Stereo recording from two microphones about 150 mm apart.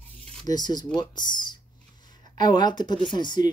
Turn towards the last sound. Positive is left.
turn(degrees=30)  # may be behind; listen again after turning